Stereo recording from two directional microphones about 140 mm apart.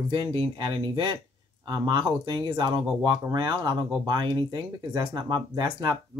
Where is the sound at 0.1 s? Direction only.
30° right (ahead or behind).